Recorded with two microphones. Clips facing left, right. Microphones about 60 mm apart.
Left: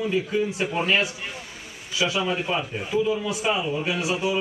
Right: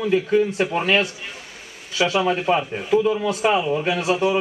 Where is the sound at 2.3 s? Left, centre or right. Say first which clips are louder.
Right 6 dB; right.